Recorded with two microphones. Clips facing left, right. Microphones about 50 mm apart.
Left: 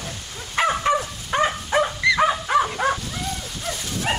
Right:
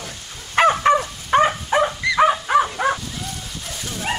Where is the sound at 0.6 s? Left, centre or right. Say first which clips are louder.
Right 6 dB; right.